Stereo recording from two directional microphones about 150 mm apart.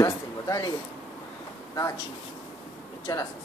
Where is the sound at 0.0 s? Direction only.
20° left (ahead or behind).